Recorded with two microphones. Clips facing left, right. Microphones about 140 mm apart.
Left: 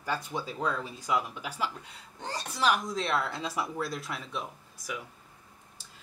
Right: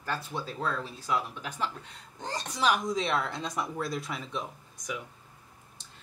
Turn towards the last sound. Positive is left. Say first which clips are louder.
# right 1 dB
turn(degrees=0)  # may be behind; listen again after turning